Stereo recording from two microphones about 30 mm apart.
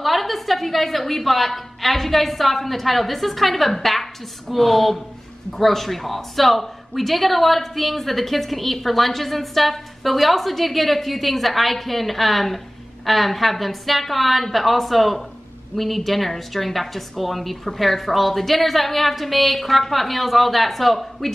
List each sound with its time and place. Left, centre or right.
0.0 s a woman's voice: centre